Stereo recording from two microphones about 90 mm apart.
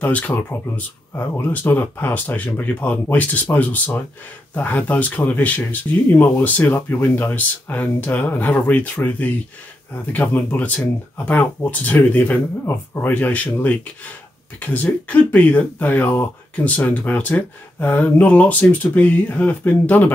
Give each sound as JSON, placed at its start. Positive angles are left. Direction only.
{"t": 0.0, "sound": "speech", "side_deg": 20}